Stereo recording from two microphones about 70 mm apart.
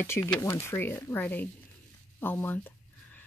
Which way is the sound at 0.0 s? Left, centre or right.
Left.